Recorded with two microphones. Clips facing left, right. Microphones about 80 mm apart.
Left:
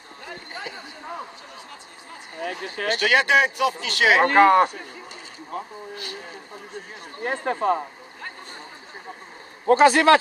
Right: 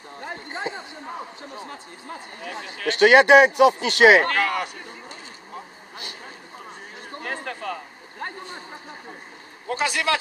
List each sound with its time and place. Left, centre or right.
0.2 s a sound: right
2.4 s speech: left
3.0 s speech: right
4.2 s speech: left
7.2 s speech: left
9.7 s speech: left